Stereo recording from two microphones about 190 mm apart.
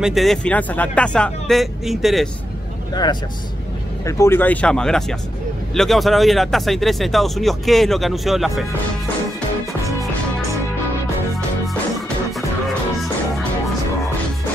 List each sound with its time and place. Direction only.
0.0 s speech: centre (ahead or behind)
2.9 s speech: 20° left (ahead or behind); by 8.6 s centre (ahead or behind)